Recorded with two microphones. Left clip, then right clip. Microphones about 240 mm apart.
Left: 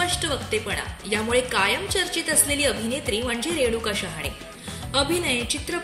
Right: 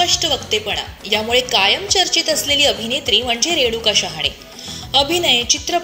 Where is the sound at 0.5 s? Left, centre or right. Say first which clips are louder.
Right 7 dB; left.